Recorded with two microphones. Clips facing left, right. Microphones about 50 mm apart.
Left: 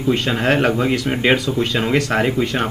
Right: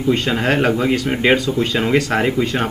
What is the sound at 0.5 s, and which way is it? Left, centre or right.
Speech, left.